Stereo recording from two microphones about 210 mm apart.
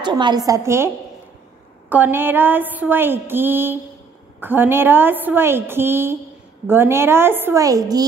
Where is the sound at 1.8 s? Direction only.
10° right (ahead or behind).